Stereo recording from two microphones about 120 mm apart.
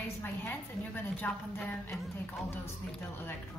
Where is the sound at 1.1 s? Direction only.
10° left (ahead or behind).